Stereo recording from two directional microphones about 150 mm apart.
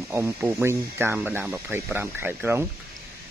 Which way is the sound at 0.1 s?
15° right (ahead or behind).